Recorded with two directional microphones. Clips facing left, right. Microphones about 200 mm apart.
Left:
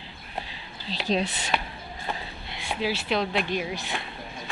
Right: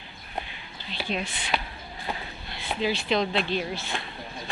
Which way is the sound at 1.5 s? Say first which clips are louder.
Even; centre (ahead or behind).